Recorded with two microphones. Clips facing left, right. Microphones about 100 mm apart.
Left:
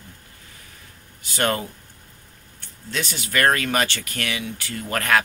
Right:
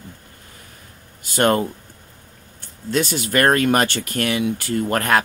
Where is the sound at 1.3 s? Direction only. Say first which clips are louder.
Right 6 dB; 50° right (ahead or behind).